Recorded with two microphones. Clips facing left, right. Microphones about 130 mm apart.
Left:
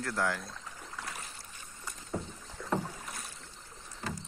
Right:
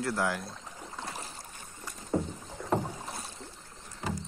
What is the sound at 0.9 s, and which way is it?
Boat, 30° right (ahead or behind).